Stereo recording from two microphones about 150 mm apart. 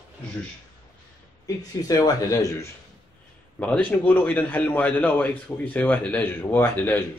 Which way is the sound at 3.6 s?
10° left (ahead or behind).